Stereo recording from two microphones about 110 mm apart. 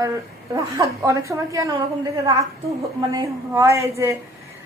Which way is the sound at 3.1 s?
25° right (ahead or behind).